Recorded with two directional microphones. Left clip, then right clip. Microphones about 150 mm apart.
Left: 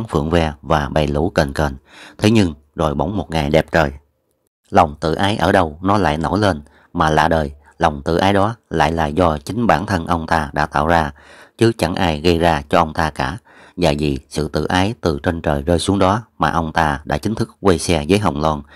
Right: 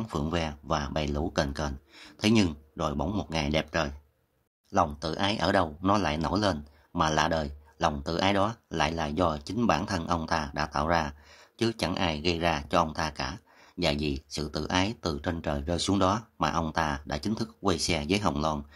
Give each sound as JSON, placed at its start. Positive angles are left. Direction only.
{"t": 0.1, "sound": "speech", "side_deg": 45}
{"t": 5.0, "sound": "a man's voice", "side_deg": 40}